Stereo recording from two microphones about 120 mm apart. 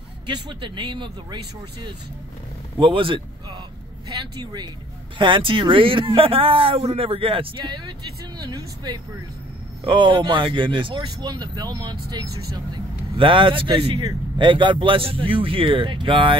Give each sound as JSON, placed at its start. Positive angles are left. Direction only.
{"t": 0.3, "sound": "speech", "side_deg": -40}
{"t": 5.2, "sound": "speech", "side_deg": -45}